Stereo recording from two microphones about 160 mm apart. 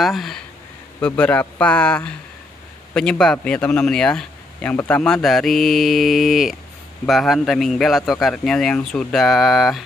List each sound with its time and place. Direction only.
0.0 s speech: centre (ahead or behind)